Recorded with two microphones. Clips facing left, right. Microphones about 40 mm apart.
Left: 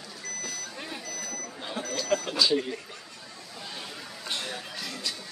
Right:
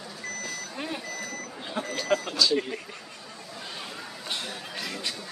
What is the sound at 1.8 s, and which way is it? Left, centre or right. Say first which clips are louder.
Speech: right 2 dB; right.